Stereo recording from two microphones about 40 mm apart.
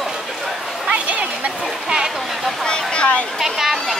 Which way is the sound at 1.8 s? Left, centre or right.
Centre.